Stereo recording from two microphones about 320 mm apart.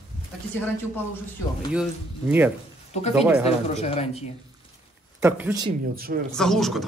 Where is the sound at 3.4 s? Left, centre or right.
Centre.